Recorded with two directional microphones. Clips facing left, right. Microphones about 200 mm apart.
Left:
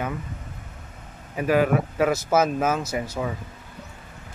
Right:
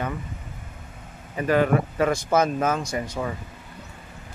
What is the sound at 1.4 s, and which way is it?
Speech, 5° left (ahead or behind).